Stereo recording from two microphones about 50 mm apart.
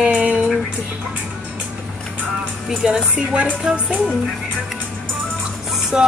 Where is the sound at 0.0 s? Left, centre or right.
Right.